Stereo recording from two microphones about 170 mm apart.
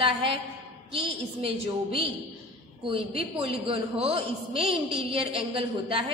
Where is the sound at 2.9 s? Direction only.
35° right (ahead or behind).